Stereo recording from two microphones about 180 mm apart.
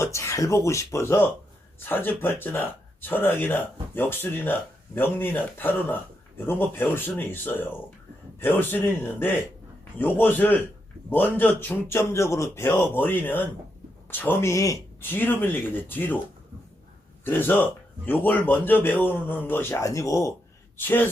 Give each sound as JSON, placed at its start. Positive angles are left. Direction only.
{"t": 0.0, "sound": "a man's voice", "side_deg": 15}
{"t": 17.2, "sound": "a man's voice", "side_deg": 10}